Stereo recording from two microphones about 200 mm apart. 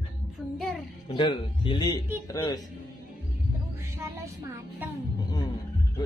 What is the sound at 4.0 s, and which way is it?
Speech, 10° right (ahead or behind).